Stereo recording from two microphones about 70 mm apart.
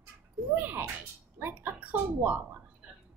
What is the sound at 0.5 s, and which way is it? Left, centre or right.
Music, right.